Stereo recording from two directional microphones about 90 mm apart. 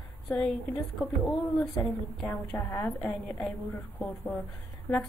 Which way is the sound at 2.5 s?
25° left (ahead or behind).